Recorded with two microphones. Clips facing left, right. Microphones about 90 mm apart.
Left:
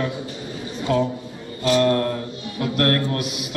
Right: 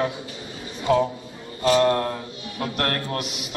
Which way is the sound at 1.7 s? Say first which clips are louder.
Left 1 dB; 25° right (ahead or behind).